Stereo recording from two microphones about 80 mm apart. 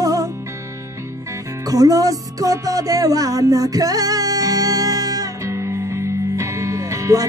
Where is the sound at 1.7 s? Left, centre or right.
Right.